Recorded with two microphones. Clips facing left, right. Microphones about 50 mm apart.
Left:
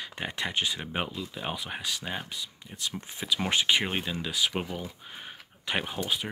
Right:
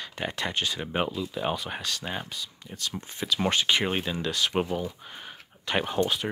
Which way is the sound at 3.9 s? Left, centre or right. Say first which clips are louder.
Right 3 dB; centre.